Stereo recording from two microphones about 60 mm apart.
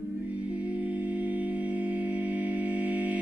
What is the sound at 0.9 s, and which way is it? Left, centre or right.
Music, right.